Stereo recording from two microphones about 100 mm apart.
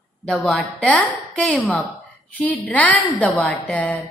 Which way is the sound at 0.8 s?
15° left (ahead or behind).